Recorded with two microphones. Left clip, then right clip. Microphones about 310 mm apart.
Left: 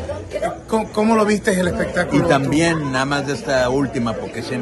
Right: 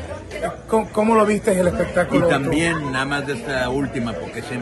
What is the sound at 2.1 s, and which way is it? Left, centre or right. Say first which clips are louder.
Speech: left 1 dB; centre.